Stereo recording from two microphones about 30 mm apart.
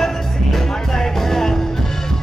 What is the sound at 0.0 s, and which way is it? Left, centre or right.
Music, centre.